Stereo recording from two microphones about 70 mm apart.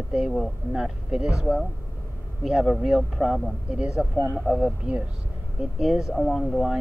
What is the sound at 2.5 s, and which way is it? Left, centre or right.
Speech, centre.